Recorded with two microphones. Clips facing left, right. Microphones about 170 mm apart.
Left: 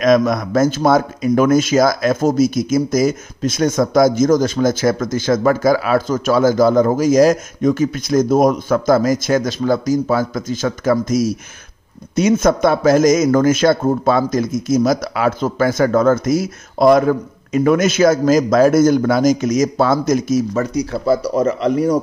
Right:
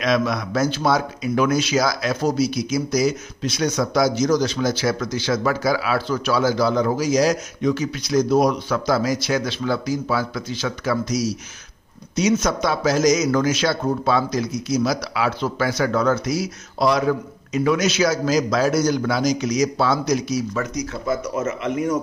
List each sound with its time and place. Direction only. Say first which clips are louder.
0.0 s speech: left 7 dB; 45° left (ahead or behind)